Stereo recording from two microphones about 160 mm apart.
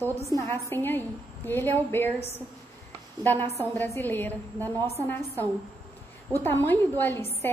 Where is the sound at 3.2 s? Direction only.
15° left (ahead or behind).